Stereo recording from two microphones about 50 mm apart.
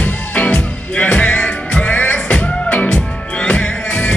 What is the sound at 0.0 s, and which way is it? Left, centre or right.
Music, left.